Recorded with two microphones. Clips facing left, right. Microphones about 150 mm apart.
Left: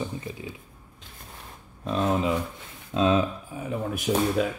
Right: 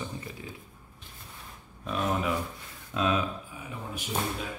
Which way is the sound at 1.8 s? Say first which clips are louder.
Left 5 dB; 25° left (ahead or behind).